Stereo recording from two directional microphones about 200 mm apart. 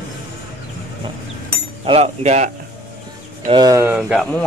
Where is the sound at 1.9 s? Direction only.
35° right (ahead or behind).